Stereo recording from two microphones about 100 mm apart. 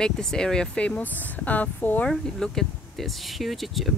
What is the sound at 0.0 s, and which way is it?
Speech, 5° left (ahead or behind).